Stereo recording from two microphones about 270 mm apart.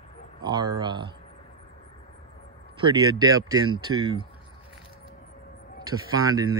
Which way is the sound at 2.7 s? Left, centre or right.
Centre.